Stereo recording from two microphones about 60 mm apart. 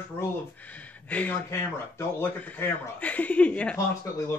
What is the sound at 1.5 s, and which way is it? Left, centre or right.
Speech, left.